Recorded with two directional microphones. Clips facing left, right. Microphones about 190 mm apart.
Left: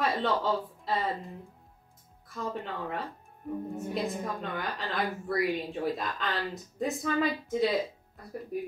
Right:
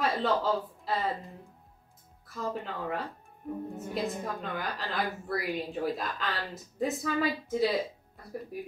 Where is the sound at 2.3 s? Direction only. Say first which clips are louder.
Even; centre (ahead or behind).